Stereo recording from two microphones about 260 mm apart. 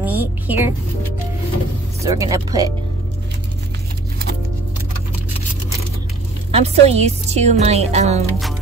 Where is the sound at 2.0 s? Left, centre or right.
Centre.